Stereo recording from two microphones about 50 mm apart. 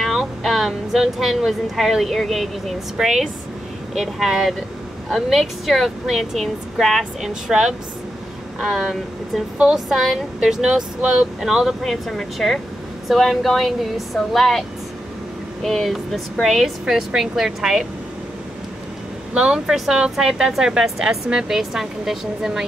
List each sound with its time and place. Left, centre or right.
0.0 s a woman's voice: centre
11.8 s a woman's voice: centre
15.6 s a woman's voice: centre
19.3 s speech: centre